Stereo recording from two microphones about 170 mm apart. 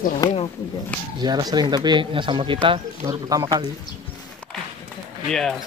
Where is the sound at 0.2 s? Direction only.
20° left (ahead or behind).